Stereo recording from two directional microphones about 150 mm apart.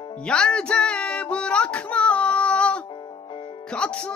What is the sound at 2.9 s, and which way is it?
Music, 35° left (ahead or behind).